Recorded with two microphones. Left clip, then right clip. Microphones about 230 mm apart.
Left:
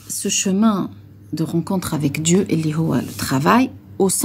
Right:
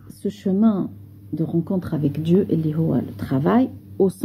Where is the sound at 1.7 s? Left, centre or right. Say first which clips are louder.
Left 2 dB; centre.